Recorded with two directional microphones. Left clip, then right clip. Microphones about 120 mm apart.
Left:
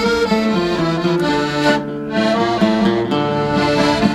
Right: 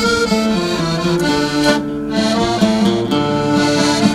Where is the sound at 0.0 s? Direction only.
40° right (ahead or behind).